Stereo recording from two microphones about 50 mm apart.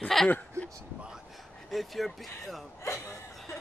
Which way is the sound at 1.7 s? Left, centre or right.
Centre.